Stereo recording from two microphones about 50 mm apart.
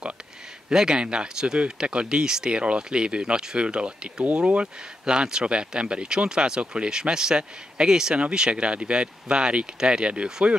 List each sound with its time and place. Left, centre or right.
0.7 s speech: centre